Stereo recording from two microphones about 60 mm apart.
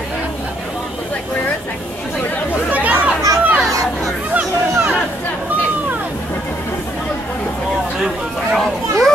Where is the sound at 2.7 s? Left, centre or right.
Right.